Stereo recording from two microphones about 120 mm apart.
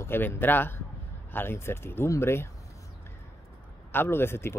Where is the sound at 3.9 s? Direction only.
20° left (ahead or behind).